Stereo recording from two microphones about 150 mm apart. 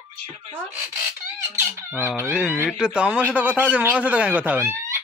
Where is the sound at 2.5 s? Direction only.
15° left (ahead or behind).